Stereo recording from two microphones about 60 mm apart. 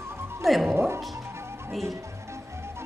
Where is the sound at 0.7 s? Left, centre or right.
Right.